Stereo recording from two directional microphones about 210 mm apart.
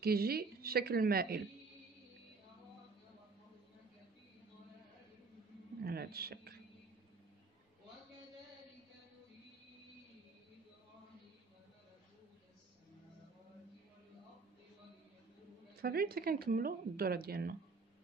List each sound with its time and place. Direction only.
0.0 s speech: 45° right (ahead or behind)
5.9 s speech: 45° right (ahead or behind)
15.7 s speech: 45° right (ahead or behind)